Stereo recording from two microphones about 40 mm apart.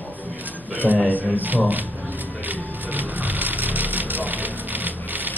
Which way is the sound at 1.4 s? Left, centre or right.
Right.